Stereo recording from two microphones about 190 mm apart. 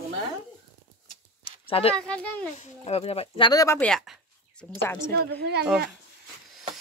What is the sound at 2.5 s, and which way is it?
Speech, 35° left (ahead or behind).